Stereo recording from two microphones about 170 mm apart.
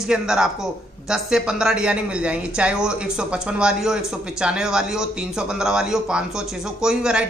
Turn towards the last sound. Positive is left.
turn(degrees=-5)  # may be behind; listen again after turning